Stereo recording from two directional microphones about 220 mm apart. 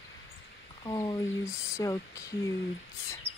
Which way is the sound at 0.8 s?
15° left (ahead or behind).